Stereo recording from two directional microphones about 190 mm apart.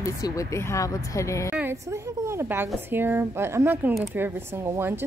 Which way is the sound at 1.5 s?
10° right (ahead or behind).